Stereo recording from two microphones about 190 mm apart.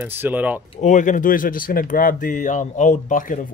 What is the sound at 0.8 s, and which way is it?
Speech, 40° left (ahead or behind).